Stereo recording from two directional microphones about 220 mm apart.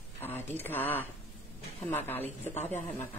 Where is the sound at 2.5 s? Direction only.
30° left (ahead or behind).